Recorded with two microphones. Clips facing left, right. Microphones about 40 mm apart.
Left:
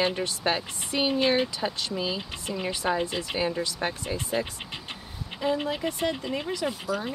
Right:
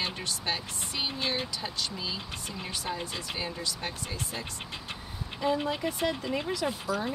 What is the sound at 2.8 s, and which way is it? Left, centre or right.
Speech, left.